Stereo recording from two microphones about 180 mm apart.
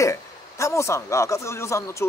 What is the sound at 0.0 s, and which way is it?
Speech, 15° left (ahead or behind).